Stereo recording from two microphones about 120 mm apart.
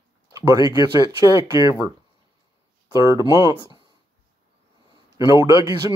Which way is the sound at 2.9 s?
25° right (ahead or behind).